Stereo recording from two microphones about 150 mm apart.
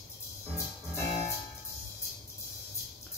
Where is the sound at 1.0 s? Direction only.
50° left (ahead or behind).